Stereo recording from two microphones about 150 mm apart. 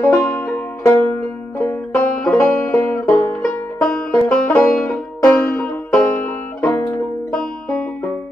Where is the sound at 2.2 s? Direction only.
10° left (ahead or behind).